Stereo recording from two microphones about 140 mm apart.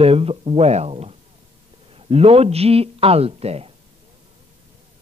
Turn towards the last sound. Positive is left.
turn(degrees=-45)  # may be behind; listen again after turning